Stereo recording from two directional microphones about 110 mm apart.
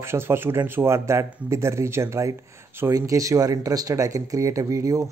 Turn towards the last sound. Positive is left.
turn(degrees=-30)  # may be behind; listen again after turning